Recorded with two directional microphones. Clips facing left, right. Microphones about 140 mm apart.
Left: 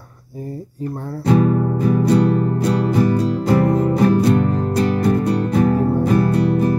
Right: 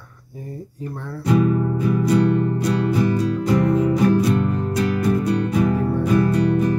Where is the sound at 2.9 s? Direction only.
55° left (ahead or behind).